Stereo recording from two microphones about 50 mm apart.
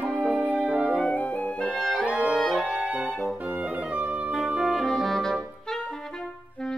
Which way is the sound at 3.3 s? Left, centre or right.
Centre.